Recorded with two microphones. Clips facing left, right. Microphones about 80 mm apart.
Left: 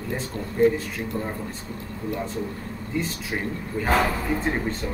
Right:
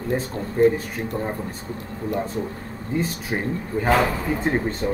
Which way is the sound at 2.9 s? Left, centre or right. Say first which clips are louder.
Right 3 dB; right.